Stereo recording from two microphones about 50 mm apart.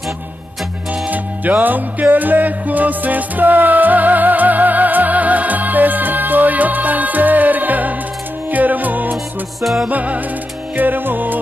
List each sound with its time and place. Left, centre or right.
1.0 s music: right
9.6 s music: centre
9.8 s music: right